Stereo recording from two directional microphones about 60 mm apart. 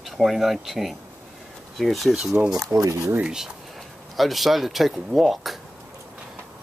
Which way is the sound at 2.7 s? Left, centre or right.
Right.